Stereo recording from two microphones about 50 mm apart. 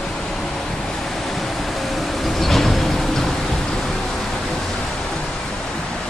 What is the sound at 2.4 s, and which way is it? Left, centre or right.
Vehicle, centre.